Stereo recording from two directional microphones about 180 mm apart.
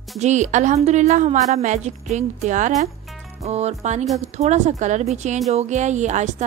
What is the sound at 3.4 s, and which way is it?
A woman's voice, 35° right (ahead or behind).